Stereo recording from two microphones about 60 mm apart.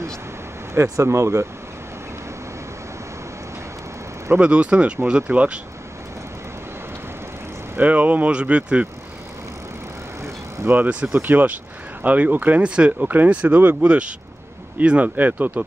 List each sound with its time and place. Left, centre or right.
1.0 s speech: right
4.4 s speech: right
7.7 s speech: right
10.7 s speech: right
12.6 s speech: centre